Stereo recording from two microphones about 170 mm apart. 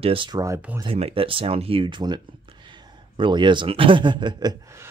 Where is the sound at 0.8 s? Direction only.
35° right (ahead or behind).